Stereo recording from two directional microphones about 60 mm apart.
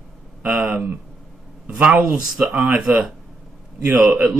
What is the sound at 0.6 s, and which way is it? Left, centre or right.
Speech, right.